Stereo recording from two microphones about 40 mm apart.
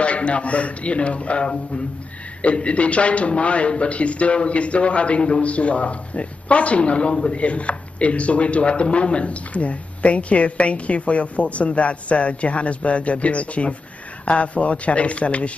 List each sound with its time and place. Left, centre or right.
0.0 s speech: left